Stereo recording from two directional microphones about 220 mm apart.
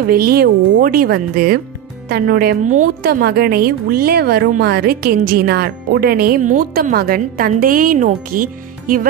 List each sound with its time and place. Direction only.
0.1 s a woman's voice: 45° right (ahead or behind)